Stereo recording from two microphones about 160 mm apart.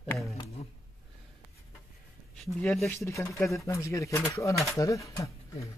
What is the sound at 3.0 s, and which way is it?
Speech, 20° left (ahead or behind).